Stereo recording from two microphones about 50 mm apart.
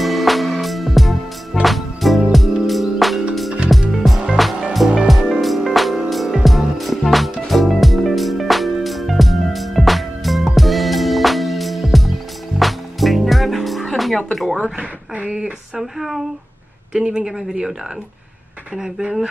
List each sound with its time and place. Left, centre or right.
0.0 s music: centre
14.6 s a sound: right
15.8 s speech: centre
16.9 s speech: centre
18.8 s speech: centre